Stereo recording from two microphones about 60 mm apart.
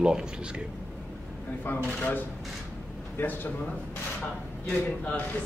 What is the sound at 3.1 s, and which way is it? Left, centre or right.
Speech, left.